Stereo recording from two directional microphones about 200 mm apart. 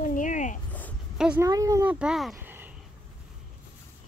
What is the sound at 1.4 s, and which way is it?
Speech, 15° right (ahead or behind).